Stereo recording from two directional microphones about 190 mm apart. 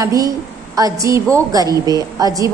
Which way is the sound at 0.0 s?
20° right (ahead or behind).